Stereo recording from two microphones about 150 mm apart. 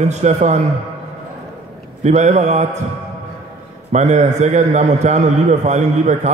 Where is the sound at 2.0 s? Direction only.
50° right (ahead or behind).